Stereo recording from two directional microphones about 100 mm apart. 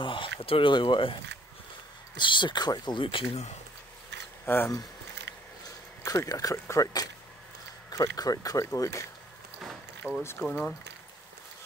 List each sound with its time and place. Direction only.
0.0 s speech: 60° left (ahead or behind); by 3.5 s 80° left
4.5 s speech: 20° left (ahead or behind)
6.0 s speech: 35° left (ahead or behind)
10.0 s speech: 15° right (ahead or behind)